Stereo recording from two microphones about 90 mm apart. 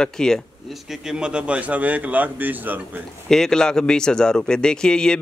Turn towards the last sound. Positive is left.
turn(degrees=10)  # may be behind; listen again after turning